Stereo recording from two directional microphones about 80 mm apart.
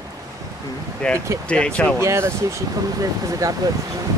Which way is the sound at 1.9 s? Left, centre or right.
Right.